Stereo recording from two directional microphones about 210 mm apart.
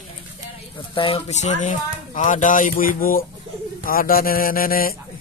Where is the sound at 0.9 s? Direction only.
25° left (ahead or behind); by 4.9 s 45° left (ahead or behind).